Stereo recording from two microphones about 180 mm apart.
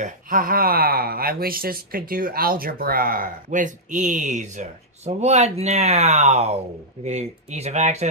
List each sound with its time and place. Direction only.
0.0 s speech: 50° right (ahead or behind)